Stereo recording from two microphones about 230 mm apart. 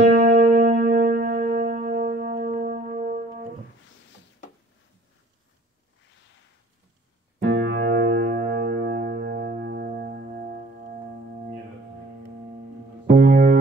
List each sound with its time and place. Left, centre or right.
0.0 s music: right
7.3 s music: right
13.1 s music: right